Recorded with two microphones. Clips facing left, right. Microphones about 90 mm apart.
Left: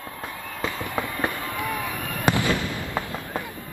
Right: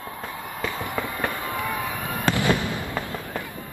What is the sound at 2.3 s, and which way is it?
Fireworks, 15° left (ahead or behind).